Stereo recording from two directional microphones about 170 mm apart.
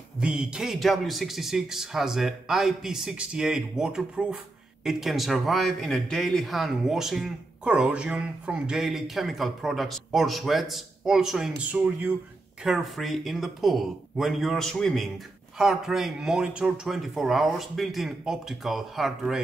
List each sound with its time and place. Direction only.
0.2 s a man's voice: 5° right (ahead or behind)